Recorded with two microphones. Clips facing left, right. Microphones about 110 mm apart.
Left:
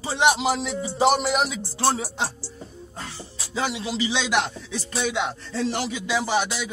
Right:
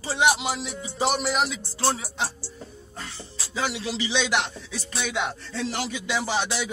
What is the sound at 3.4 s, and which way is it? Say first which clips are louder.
Music: left 2 dB; 20° left (ahead or behind).